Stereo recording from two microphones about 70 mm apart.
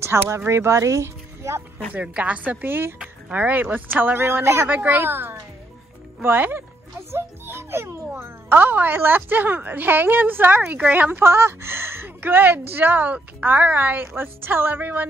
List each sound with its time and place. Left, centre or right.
0.0 s speech: right
1.9 s a woman's voice: centre; by 4.6 s right
4.6 s a child's voice: right